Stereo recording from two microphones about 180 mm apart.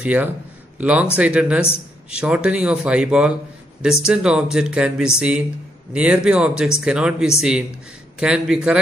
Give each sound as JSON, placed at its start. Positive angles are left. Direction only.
{"t": 0.0, "sound": "speech", "side_deg": -10}